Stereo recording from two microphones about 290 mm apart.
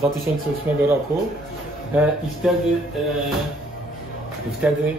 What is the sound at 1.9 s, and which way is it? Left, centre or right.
Speech, centre.